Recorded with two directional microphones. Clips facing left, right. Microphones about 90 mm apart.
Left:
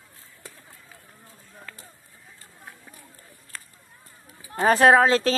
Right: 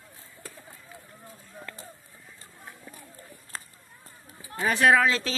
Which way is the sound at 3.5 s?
25° right (ahead or behind).